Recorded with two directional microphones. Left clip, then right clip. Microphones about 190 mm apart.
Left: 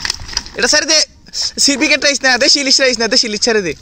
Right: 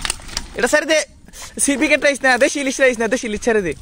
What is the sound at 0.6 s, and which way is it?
Speech, centre (ahead or behind).